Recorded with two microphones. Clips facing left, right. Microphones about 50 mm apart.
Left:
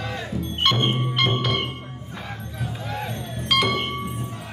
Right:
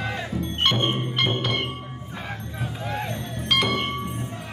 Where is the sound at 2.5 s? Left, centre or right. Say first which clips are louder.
Right 1 dB; centre.